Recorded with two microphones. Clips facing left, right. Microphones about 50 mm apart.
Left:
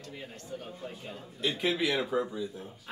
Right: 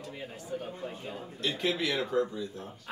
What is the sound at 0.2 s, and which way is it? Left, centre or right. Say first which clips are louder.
A man's voice: right 5 dB; centre.